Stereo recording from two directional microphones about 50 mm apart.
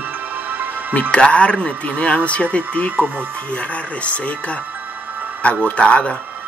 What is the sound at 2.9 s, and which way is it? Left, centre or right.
Speech, right.